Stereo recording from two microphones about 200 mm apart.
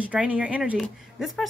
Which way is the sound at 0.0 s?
5° right (ahead or behind).